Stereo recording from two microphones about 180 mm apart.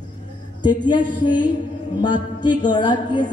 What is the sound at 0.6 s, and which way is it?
Music, 25° left (ahead or behind).